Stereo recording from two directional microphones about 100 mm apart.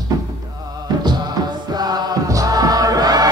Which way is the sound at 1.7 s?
40° right (ahead or behind).